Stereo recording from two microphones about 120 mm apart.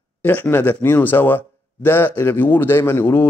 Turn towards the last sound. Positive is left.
turn(degrees=20)  # may be behind; listen again after turning